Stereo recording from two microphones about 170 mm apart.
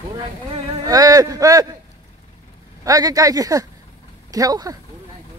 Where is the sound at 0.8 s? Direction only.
20° right (ahead or behind).